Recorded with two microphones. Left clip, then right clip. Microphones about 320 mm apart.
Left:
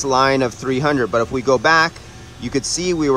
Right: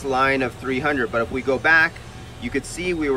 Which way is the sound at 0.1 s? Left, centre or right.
Centre.